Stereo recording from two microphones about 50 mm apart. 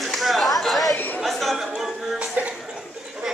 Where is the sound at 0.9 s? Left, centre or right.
Left.